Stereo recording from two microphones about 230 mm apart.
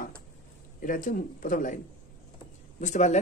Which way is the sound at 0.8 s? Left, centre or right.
Left.